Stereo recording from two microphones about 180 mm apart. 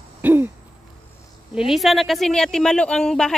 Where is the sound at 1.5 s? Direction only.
Centre (ahead or behind).